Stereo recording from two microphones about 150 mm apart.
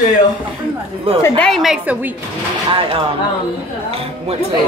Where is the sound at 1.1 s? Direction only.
40° right (ahead or behind).